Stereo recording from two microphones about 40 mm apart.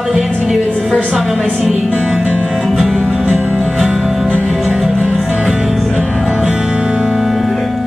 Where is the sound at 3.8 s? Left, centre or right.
Centre.